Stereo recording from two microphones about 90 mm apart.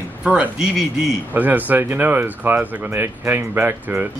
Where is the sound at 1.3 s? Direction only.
20° right (ahead or behind).